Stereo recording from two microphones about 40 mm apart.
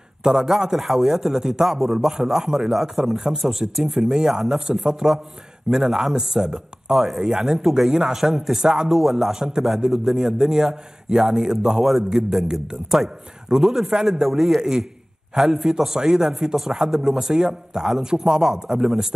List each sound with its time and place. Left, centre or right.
0.2 s speech: centre